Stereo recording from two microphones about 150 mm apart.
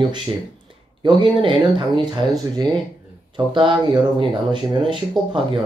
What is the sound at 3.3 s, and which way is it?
Speech, 35° right (ahead or behind).